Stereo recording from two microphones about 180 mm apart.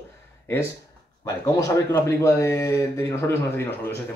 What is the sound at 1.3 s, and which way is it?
Speech, 20° left (ahead or behind).